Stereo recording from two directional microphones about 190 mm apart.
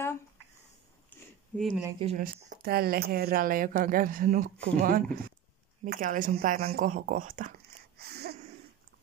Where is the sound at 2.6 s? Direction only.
55° right (ahead or behind).